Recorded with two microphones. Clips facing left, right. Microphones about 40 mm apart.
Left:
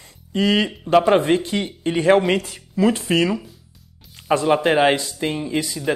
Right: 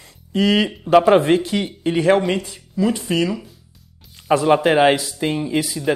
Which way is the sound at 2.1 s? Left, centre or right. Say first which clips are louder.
Left 1 dB; centre.